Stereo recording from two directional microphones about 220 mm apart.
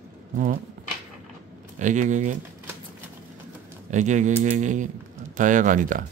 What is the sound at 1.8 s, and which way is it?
Speech, 35° right (ahead or behind).